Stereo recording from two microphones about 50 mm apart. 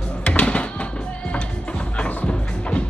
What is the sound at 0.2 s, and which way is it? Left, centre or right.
Music, left.